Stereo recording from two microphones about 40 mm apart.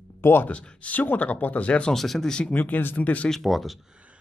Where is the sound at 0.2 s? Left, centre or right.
Left.